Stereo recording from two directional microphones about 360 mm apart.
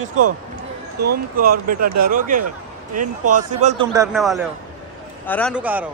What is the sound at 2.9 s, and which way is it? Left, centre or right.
Speech, right.